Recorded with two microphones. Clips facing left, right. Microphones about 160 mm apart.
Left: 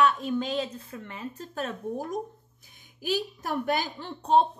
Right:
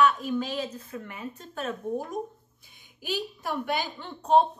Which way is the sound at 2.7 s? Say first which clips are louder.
Left 3 dB; 45° left (ahead or behind).